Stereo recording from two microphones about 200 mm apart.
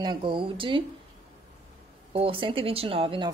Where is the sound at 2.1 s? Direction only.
25° right (ahead or behind).